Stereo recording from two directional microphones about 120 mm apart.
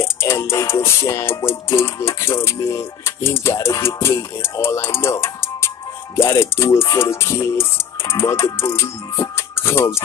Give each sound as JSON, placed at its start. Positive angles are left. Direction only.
{"t": 0.0, "sound": "music", "side_deg": 25}